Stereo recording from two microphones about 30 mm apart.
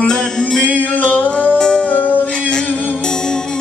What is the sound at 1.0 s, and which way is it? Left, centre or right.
Music, left.